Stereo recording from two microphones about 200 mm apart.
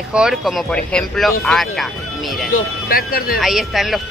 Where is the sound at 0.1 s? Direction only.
5° right (ahead or behind).